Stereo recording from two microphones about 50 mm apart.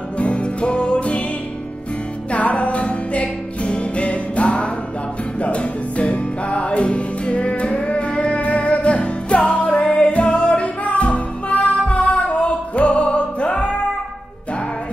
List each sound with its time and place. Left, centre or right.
0.2 s music: left
2.3 s music: left